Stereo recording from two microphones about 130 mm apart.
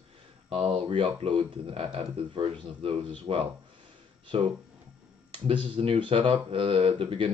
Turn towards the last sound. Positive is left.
turn(degrees=-45)  # may be behind; listen again after turning